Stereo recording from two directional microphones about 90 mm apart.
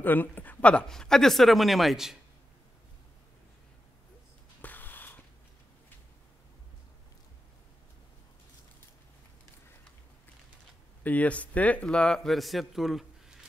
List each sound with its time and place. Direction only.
0.0 s speech: 20° left (ahead or behind); by 2.1 s 5° right (ahead or behind)
4.6 s a sound: 20° left (ahead or behind)
11.1 s speech: 15° left (ahead or behind); by 13.0 s centre (ahead or behind)